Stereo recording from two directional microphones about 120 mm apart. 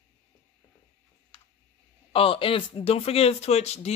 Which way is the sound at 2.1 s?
50° left (ahead or behind).